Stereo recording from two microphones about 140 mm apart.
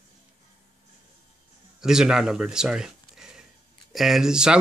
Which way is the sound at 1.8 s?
5° right (ahead or behind).